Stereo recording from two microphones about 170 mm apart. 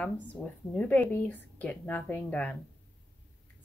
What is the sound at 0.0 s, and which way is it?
A woman's voice, 10° left (ahead or behind).